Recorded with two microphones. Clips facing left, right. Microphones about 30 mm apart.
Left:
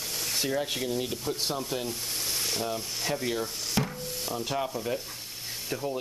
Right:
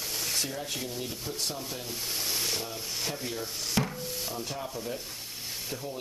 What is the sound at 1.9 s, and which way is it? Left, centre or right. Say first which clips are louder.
Frying: even; centre.